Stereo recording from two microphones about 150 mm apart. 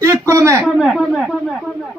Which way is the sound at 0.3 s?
20° right (ahead or behind).